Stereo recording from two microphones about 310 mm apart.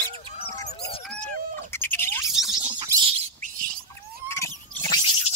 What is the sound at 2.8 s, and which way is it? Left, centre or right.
Bird, centre.